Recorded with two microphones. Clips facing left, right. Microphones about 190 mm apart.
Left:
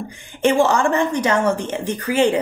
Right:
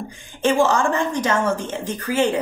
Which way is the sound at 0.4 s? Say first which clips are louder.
Left 2 dB; 15° left (ahead or behind).